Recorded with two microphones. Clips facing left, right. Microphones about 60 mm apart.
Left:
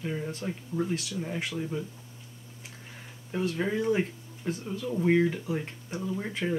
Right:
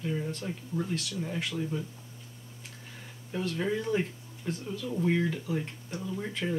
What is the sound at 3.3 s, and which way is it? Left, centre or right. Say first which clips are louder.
Speech: left 2 dB; centre.